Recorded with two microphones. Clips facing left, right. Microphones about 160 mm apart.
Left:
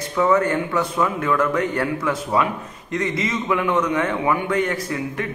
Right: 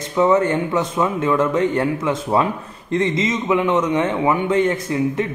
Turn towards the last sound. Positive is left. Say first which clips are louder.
# right 6 dB
turn(degrees=-25)  # may be behind; listen again after turning